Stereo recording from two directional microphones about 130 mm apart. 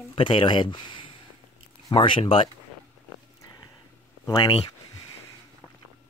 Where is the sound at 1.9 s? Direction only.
40° left (ahead or behind).